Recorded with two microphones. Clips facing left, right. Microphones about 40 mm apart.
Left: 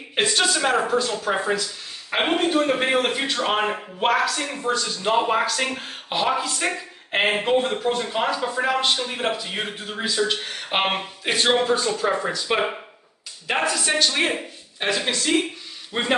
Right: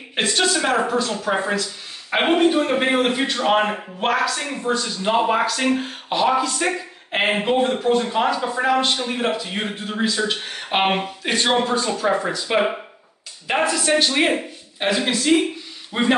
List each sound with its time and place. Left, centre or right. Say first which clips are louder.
0.1 s a man's voice: right 1 dB; centre